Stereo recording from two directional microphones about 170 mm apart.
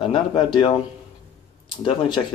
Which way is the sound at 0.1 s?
25° left (ahead or behind).